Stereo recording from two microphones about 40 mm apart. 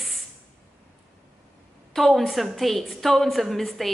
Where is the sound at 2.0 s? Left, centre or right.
Centre.